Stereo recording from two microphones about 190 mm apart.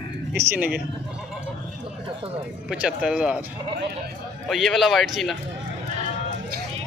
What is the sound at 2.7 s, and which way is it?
Speech, 5° right (ahead or behind).